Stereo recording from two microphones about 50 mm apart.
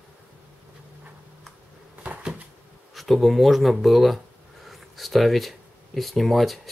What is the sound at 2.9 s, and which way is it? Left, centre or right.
Speech, centre.